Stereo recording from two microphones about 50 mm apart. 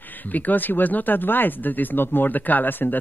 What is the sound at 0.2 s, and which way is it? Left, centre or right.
Speech, left.